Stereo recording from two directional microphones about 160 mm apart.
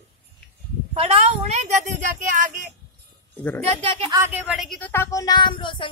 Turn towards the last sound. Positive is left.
turn(degrees=30)  # may be behind; listen again after turning